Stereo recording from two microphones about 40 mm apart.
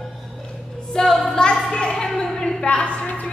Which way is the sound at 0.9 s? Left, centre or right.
Centre.